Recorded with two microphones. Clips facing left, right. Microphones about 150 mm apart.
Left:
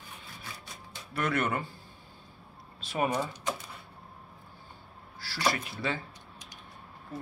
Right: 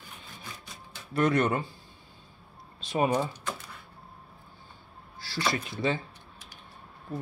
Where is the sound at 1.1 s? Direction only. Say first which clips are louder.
Right 5 dB; 30° right (ahead or behind).